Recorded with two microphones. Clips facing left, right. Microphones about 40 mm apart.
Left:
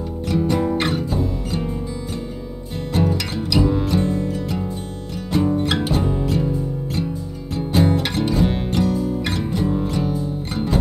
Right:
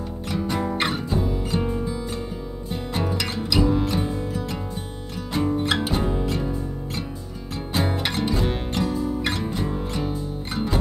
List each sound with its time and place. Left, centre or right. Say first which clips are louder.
0.3 s music: left 6 dB; centre
2.9 s music: left 6 dB; centre
7.5 s music: left 7 dB; centre